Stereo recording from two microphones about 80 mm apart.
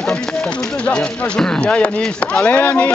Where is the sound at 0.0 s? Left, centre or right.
Centre.